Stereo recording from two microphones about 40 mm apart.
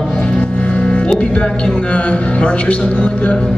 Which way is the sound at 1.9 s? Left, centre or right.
Left.